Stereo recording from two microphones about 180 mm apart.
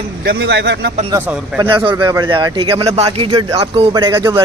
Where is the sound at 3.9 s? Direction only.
15° right (ahead or behind).